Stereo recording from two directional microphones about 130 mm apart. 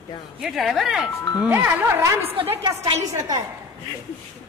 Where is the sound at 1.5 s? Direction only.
20° right (ahead or behind).